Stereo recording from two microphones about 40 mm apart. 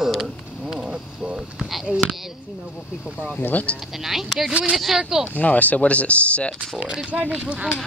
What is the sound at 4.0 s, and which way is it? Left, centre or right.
Speech, centre.